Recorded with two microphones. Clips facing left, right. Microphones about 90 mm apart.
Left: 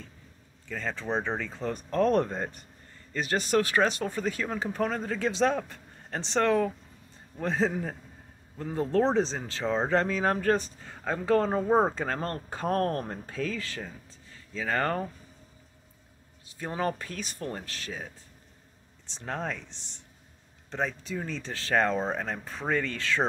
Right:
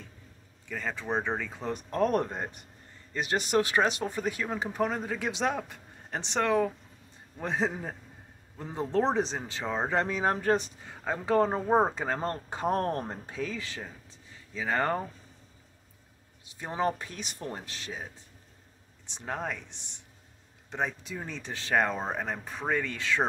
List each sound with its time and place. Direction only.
0.7 s speech: 10° right (ahead or behind)
16.4 s speech: 20° right (ahead or behind)
19.0 s speech: 15° right (ahead or behind)